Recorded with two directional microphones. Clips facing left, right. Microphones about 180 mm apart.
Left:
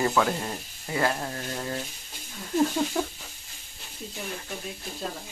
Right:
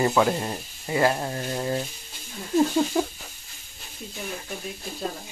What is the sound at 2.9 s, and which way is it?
Speech, 10° right (ahead or behind).